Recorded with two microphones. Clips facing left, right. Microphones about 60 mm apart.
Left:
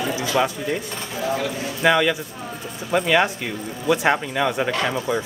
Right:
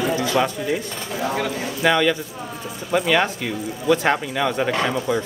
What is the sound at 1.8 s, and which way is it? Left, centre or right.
Speech, centre.